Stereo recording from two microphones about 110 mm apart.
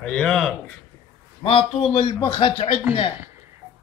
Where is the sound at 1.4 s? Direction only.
55° left (ahead or behind).